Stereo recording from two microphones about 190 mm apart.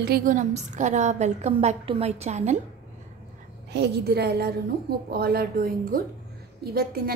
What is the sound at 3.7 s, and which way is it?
A woman's voice, 60° right (ahead or behind).